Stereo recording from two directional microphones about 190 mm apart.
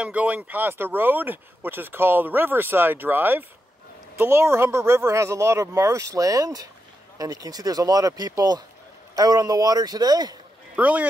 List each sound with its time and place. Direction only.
0.0 s speech: 5° right (ahead or behind)
10.8 s speech: 10° right (ahead or behind)